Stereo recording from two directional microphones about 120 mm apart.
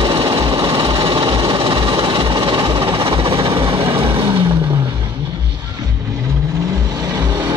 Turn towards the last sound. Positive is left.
turn(degrees=-25)  # may be behind; listen again after turning